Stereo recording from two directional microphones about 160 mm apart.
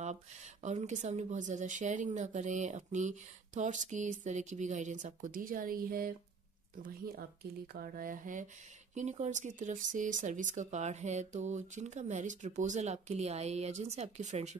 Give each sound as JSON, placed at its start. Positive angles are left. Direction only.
{"t": 0.0, "sound": "speech", "side_deg": -45}